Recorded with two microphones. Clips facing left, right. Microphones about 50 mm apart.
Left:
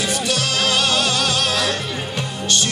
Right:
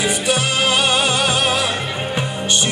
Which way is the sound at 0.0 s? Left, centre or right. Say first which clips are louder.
Right 3 dB; centre.